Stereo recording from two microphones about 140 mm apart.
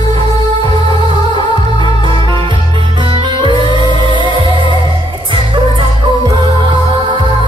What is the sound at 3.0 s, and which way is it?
Music, 35° right (ahead or behind).